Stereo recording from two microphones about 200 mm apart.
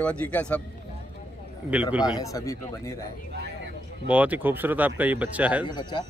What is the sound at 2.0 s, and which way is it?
Speech, 20° left (ahead or behind).